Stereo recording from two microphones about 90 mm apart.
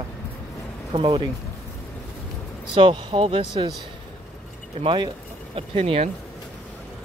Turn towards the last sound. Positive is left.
turn(degrees=-90)